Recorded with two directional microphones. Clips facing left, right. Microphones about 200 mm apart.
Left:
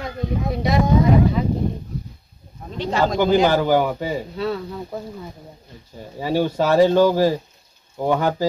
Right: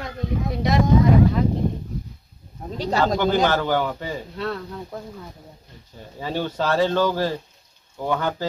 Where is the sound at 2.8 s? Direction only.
35° right (ahead or behind).